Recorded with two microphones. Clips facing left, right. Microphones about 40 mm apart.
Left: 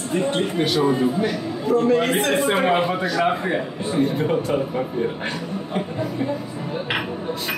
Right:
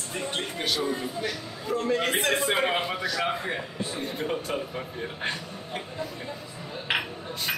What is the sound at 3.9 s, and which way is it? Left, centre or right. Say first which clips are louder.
Speech: left 12 dB; left.